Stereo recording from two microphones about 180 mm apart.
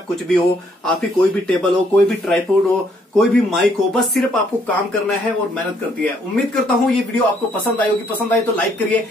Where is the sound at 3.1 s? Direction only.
Centre (ahead or behind).